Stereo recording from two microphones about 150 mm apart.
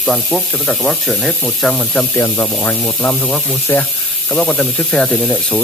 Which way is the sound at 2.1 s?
15° left (ahead or behind).